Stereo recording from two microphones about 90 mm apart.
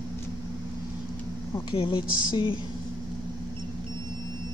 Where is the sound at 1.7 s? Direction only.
80° left.